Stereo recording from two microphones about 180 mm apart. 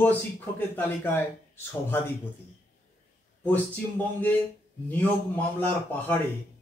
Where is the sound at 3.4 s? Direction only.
10° left (ahead or behind).